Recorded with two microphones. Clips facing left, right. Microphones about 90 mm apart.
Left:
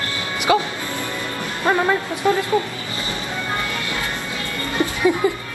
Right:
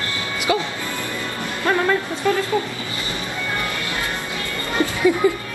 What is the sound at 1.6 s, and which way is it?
Speech, 20° left (ahead or behind).